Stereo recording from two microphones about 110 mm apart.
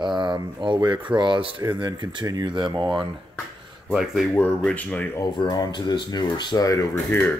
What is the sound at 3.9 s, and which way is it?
Speech, centre (ahead or behind).